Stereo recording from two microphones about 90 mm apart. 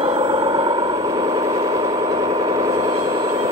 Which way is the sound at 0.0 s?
80° right.